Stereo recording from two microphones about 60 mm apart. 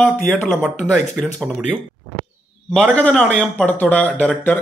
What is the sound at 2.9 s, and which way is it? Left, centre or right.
Speech, centre.